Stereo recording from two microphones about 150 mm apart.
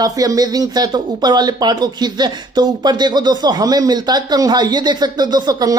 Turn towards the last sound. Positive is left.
turn(degrees=-30)  # may be behind; listen again after turning